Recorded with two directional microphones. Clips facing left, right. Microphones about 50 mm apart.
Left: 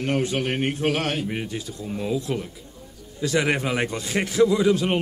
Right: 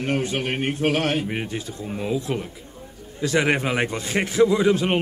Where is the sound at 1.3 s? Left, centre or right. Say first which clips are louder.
Right 1 dB; right.